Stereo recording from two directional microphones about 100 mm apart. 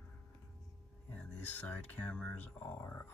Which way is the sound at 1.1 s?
10° left (ahead or behind).